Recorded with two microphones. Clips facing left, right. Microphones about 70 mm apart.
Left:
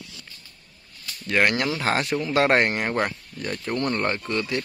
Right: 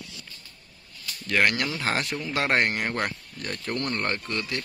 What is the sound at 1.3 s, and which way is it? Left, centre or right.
Speech, left.